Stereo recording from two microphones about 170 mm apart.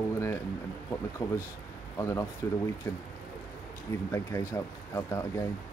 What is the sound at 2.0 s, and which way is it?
Speech, 15° left (ahead or behind).